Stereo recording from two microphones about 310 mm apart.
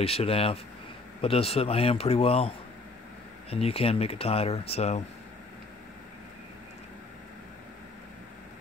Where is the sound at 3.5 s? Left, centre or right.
Centre.